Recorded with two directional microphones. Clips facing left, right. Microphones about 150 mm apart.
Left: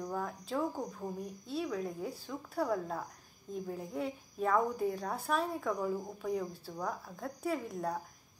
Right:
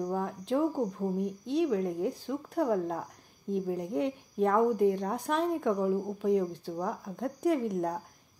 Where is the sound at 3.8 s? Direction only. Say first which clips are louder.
Right 7 dB; 85° right.